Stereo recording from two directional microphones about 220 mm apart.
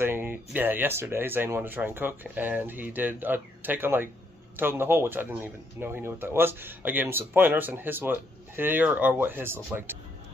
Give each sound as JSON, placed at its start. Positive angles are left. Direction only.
{"t": 0.0, "sound": "speech", "side_deg": -10}